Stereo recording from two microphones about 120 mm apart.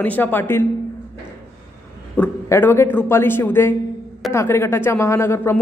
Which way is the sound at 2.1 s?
15° left (ahead or behind).